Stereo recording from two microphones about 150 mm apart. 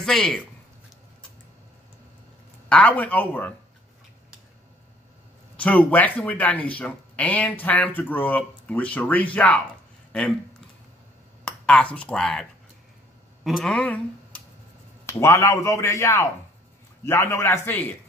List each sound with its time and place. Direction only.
0.0 s speech: 5° left (ahead or behind)
2.7 s speech: 10° left (ahead or behind)
5.6 s speech: 10° left (ahead or behind)
11.4 s speech: 10° left (ahead or behind)